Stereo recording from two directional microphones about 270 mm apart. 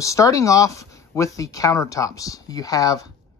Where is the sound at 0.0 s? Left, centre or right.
Centre.